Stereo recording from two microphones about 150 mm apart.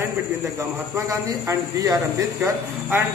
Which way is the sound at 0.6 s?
15° right (ahead or behind).